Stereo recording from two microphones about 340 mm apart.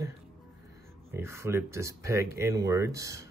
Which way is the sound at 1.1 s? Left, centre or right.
Centre.